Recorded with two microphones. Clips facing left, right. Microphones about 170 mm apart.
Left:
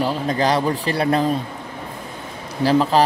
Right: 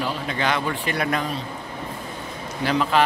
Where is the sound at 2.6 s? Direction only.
35° left (ahead or behind).